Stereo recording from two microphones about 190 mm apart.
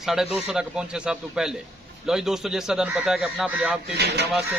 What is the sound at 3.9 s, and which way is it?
Speech, 60° right (ahead or behind).